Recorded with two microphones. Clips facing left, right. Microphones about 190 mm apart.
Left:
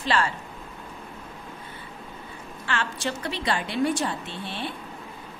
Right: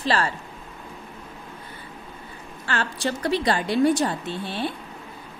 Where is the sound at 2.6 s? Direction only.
40° right (ahead or behind).